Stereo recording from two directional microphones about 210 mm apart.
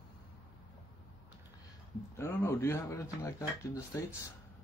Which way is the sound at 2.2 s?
10° left (ahead or behind).